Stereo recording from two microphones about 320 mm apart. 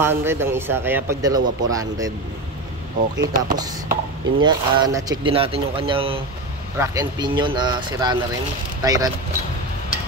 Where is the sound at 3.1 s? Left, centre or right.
Right.